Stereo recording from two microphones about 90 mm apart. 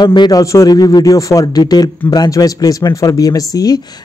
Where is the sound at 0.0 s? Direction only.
55° left (ahead or behind).